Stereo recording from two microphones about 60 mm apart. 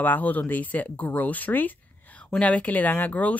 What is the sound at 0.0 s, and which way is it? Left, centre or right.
Speech, left.